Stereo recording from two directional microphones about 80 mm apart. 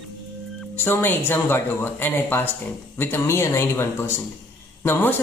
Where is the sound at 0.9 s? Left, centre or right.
Left.